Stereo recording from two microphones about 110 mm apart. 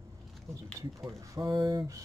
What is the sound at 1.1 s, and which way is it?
Speech, 35° right (ahead or behind).